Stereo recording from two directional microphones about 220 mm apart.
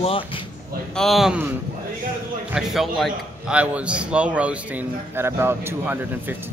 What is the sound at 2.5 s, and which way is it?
A man's voice, centre (ahead or behind).